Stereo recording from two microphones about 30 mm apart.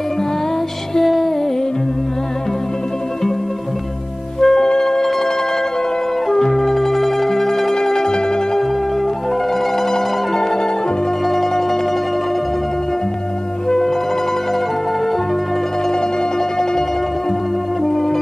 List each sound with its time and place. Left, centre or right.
1.0 s music: centre
4.4 s music: centre
6.3 s music: centre
7.7 s zither: centre
9.8 s music: centre
13.7 s music: centre
17.8 s music: centre